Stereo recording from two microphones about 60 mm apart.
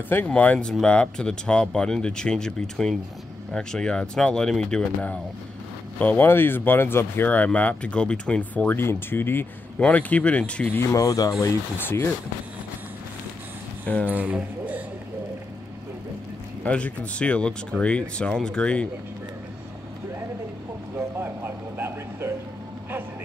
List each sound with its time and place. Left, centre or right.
0.3 s speech: left
5.9 s speech: left
6.2 s speech: left
7.2 s speech: left
8.7 s speech: left
9.8 s speech: left
10.7 s speech: left
11.0 s speech: left
11.8 s speech: left
14.0 s speech: right
16.6 s speech: left
21.2 s vehicle: right